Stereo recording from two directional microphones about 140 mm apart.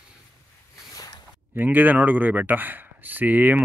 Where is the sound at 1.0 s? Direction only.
25° left (ahead or behind).